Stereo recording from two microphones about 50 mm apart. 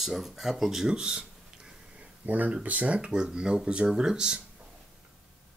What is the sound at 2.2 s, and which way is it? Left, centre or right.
Speech, right.